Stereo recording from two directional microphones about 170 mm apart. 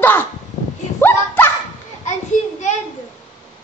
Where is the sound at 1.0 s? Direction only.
10° left (ahead or behind).